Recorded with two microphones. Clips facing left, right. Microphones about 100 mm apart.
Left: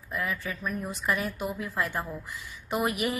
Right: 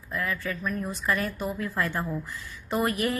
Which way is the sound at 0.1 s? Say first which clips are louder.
Right 2 dB; 15° left (ahead or behind).